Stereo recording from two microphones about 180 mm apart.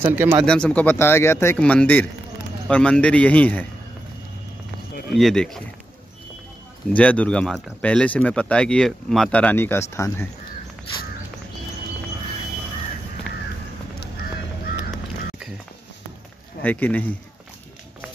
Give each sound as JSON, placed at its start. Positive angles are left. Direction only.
{"t": 0.1, "sound": "speech", "side_deg": -10}
{"t": 0.5, "sound": "speech", "side_deg": 5}
{"t": 5.1, "sound": "speech", "side_deg": 0}
{"t": 6.9, "sound": "speech", "side_deg": 5}
{"t": 16.6, "sound": "speech", "side_deg": 10}